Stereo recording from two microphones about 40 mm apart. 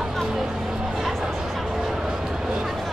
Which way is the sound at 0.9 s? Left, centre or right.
Centre.